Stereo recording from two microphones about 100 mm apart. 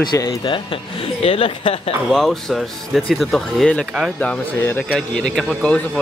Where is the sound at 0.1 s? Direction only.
35° left (ahead or behind).